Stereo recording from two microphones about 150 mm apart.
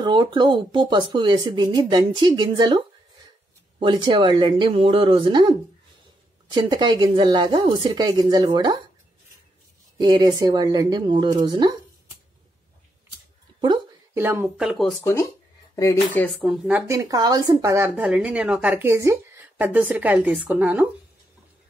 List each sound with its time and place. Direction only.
0.0 s speech: 30° right (ahead or behind)
3.8 s speech: 30° right (ahead or behind)
6.5 s speech: 30° right (ahead or behind)
9.9 s speech: 25° right (ahead or behind)
14.1 s speech: 15° right (ahead or behind)
15.7 s speech: 20° left (ahead or behind)
16.4 s speech: 10° right (ahead or behind)
16.8 s speech: 20° right (ahead or behind)